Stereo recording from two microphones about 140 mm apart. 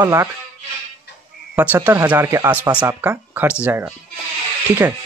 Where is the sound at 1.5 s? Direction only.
15° right (ahead or behind).